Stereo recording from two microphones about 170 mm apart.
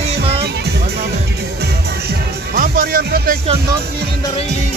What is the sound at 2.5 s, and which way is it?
Music, 60° right (ahead or behind).